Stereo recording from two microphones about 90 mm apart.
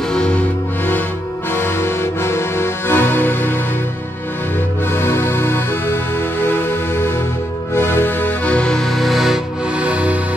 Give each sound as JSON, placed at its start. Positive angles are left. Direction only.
{"t": 0.1, "sound": "music", "side_deg": 10}
{"t": 4.9, "sound": "music", "side_deg": 25}
{"t": 9.8, "sound": "music", "side_deg": -15}